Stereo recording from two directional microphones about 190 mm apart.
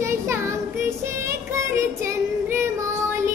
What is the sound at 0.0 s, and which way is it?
Child singing, 15° right (ahead or behind).